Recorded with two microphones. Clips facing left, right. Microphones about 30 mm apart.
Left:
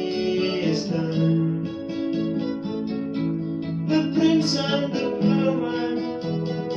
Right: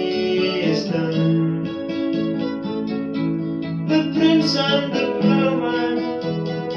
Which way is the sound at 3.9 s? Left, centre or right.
Right.